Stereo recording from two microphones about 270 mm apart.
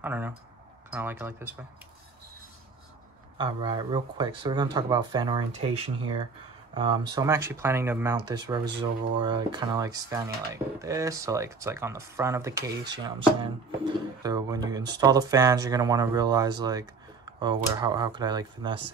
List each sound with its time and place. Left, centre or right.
0.0 s speech: centre
3.3 s speech: centre